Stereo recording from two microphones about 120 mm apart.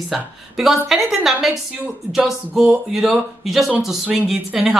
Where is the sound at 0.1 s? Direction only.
Centre (ahead or behind).